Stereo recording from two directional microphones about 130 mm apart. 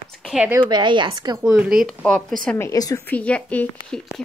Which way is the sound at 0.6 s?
35° right (ahead or behind).